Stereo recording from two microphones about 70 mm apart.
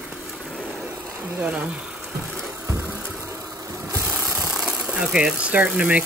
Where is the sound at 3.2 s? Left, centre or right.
Right.